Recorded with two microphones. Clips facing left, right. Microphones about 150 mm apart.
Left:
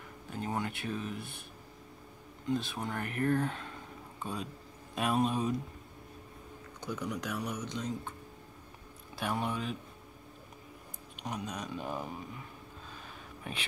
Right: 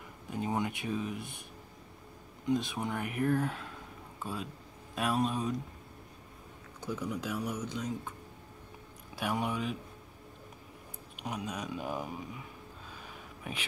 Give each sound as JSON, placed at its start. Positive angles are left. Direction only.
{"t": 0.3, "sound": "speech", "side_deg": -15}
{"t": 2.4, "sound": "speech", "side_deg": -15}
{"t": 6.8, "sound": "speech", "side_deg": -5}
{"t": 9.1, "sound": "speech", "side_deg": -10}
{"t": 11.1, "sound": "speech", "side_deg": -5}